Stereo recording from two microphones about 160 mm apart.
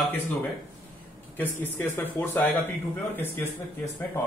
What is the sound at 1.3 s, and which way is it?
Speech, 10° left (ahead or behind).